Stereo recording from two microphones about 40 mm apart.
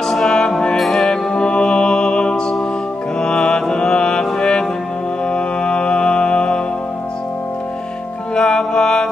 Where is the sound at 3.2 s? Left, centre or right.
Centre.